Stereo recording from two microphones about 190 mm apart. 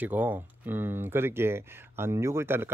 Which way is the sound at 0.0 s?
10° right (ahead or behind).